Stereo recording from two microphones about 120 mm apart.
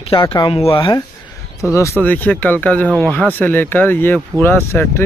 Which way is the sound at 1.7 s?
25° left (ahead or behind).